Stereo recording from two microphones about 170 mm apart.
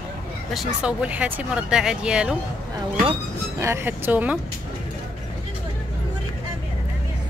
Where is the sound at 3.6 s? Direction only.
15° right (ahead or behind).